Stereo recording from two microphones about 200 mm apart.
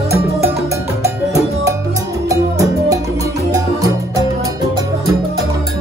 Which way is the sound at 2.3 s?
15° right (ahead or behind).